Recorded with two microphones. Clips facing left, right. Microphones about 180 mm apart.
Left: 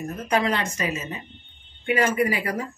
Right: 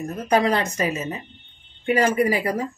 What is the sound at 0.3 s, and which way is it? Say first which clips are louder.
Speech: right 4 dB; 35° right (ahead or behind).